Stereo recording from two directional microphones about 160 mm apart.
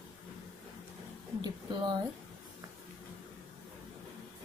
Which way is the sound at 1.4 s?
25° right (ahead or behind).